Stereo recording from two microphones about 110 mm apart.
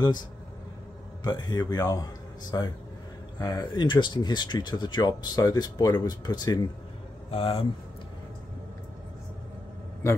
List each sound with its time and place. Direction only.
1.2 s speech: 35° left (ahead or behind)
7.2 s speech: 60° left (ahead or behind)